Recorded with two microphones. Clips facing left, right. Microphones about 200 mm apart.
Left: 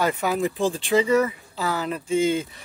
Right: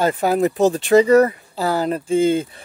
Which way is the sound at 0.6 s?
45° right (ahead or behind).